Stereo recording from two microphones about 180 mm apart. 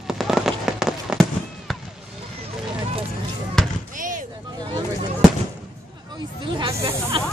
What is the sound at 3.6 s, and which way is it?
Basketball bounce, centre (ahead or behind).